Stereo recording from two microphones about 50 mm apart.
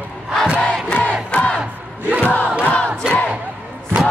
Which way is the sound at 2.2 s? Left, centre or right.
Left.